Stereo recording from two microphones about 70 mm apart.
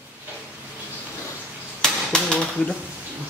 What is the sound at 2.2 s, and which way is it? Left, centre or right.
Speech, centre.